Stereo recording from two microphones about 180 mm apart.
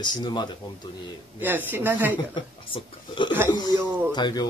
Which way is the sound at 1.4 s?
10° right (ahead or behind).